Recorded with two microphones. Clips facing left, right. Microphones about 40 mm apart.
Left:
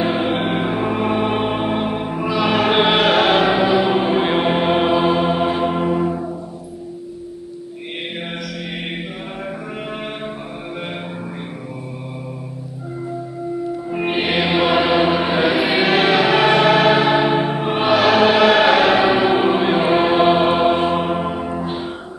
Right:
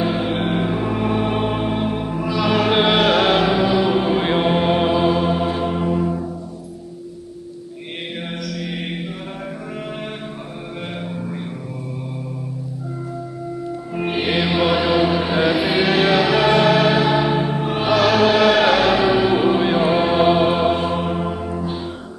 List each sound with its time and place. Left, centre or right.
0.0 s music: centre
13.9 s music: centre